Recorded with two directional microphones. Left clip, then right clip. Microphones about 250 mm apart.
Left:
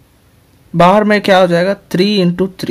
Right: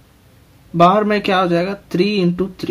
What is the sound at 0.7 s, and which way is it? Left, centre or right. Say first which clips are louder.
Speech: left 4 dB; left.